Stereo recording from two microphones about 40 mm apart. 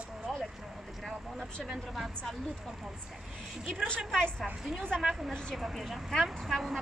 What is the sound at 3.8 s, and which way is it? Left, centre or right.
Speech, centre.